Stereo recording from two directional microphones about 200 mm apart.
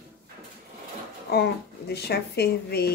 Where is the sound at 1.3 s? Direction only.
50° left (ahead or behind).